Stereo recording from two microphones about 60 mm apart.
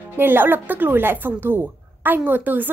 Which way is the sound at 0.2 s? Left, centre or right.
Right.